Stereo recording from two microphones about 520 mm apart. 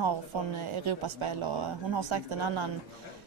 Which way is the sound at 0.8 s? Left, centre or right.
Right.